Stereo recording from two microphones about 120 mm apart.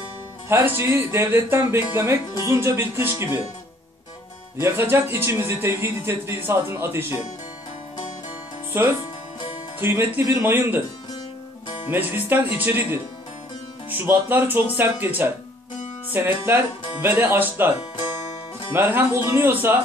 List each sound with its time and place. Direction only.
0.5 s speech: 20° right (ahead or behind)
4.6 s speech: 20° right (ahead or behind)
9.8 s speech: 20° right (ahead or behind)
11.9 s speech: 15° right (ahead or behind)